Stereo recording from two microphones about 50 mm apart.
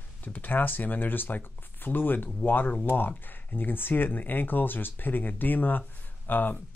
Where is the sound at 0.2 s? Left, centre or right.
Left.